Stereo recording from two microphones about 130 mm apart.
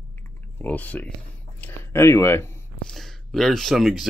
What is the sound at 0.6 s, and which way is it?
Speech, 15° left (ahead or behind).